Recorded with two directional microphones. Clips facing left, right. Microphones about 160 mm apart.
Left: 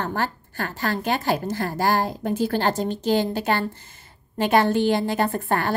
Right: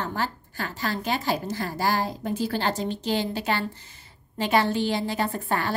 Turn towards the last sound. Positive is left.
turn(degrees=50)  # may be behind; listen again after turning